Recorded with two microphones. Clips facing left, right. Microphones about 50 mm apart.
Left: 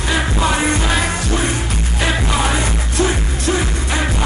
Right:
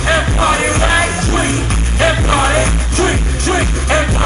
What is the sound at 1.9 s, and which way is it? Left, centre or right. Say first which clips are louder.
Music: right 6 dB; right.